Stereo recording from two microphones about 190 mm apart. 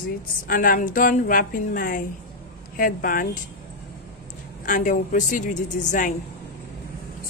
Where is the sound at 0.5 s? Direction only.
45° left (ahead or behind).